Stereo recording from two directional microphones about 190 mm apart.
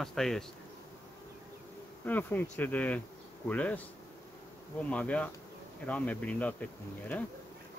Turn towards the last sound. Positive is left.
turn(degrees=10)  # may be behind; listen again after turning